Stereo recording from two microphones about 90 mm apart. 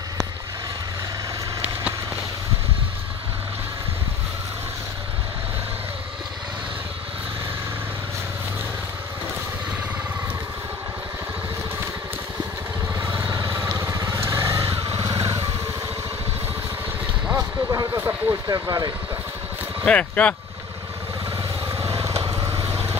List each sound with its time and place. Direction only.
13.0 s vehicle: 25° right (ahead or behind)
17.4 s vehicle: 35° right (ahead or behind)
18.5 s speech: 45° right (ahead or behind)
19.9 s speech: 15° left (ahead or behind)
21.6 s vehicle: 35° right (ahead or behind)